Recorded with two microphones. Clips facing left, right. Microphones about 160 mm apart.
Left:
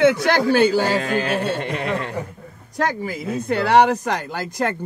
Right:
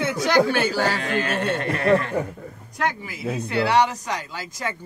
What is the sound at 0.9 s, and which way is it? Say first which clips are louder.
Speech: left 4 dB; 40° left (ahead or behind).